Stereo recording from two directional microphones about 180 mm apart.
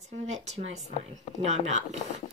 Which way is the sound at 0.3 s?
40° right (ahead or behind).